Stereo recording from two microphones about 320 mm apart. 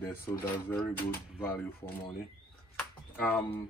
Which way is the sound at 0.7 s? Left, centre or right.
Centre.